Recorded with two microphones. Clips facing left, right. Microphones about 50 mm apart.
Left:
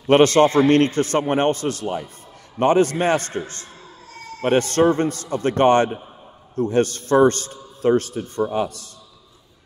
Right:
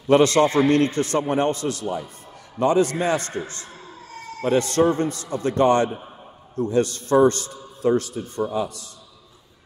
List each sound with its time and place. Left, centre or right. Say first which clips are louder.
0.0 s a man's voice: left 2 dB; left